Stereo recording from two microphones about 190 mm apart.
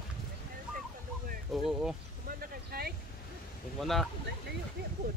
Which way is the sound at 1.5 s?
5° right (ahead or behind).